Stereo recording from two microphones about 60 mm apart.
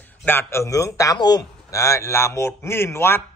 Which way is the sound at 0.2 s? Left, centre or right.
Left.